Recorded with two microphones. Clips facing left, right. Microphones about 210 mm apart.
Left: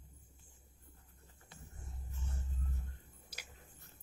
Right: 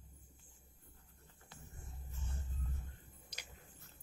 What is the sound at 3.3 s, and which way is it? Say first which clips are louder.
Chewing: left 1 dB; 5° left (ahead or behind).